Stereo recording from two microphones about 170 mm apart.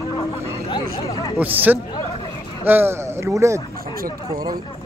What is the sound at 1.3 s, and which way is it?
A man's voice, 10° right (ahead or behind).